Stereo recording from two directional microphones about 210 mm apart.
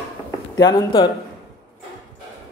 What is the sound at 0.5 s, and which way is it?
Speech, 15° left (ahead or behind).